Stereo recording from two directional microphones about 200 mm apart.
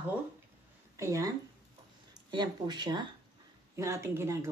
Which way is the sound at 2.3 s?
20° right (ahead or behind).